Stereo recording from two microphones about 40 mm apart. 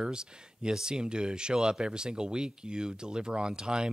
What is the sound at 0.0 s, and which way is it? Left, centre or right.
Speech, centre.